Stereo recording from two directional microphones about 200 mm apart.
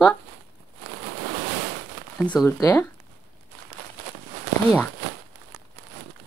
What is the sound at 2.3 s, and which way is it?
Speech, 10° left (ahead or behind).